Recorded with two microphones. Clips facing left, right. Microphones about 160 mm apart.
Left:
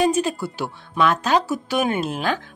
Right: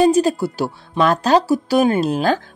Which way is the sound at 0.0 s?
35° right (ahead or behind).